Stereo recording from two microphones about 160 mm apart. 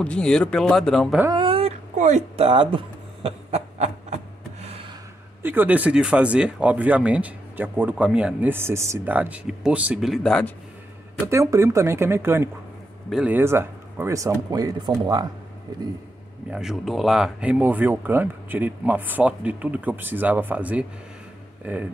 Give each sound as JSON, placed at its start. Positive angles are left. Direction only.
{"t": 0.0, "sound": "speech", "side_deg": 5}
{"t": 1.3, "sound": "speech", "side_deg": -35}
{"t": 2.0, "sound": "a sound", "side_deg": -45}
{"t": 5.4, "sound": "speech", "side_deg": -10}
{"t": 11.2, "sound": "speech", "side_deg": -15}
{"t": 16.4, "sound": "speech", "side_deg": -5}